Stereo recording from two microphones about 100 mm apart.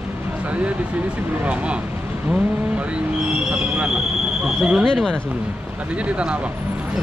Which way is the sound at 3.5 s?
10° right (ahead or behind).